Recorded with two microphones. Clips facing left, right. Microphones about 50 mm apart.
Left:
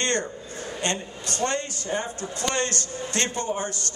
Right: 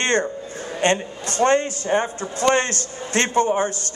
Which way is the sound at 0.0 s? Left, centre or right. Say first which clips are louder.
Right 6 dB; right.